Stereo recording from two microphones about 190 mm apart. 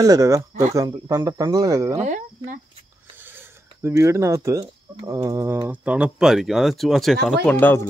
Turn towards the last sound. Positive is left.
turn(degrees=10)  # may be behind; listen again after turning